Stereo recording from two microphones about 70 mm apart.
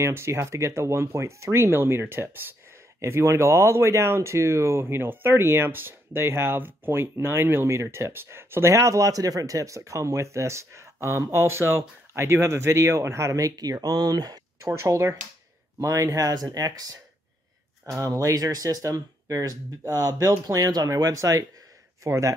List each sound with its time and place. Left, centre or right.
0.0 s speech: right
13.6 s speech: right
14.6 s speech: right
19.2 s speech: right